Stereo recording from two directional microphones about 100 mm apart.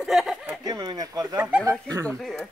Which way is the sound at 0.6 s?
40° right (ahead or behind).